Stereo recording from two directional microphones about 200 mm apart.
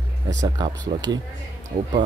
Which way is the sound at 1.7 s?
40° right (ahead or behind).